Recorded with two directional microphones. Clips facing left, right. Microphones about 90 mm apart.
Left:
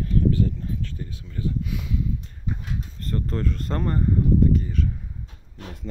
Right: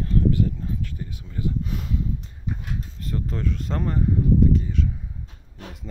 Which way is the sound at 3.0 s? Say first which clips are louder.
Left 2 dB; 5° right (ahead or behind).